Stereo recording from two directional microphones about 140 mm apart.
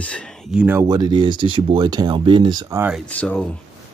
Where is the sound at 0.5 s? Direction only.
5° right (ahead or behind).